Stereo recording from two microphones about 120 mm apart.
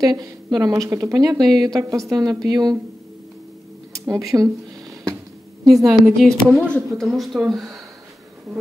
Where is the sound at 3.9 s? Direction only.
30° right (ahead or behind).